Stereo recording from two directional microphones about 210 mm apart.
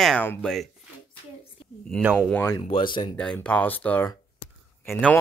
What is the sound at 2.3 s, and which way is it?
Speech, 15° left (ahead or behind).